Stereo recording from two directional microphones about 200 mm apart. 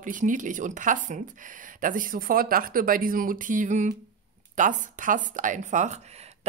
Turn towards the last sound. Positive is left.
turn(degrees=-35)  # may be behind; listen again after turning